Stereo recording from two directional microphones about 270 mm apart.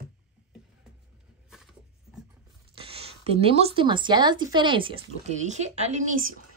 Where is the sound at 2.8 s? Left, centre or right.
Right.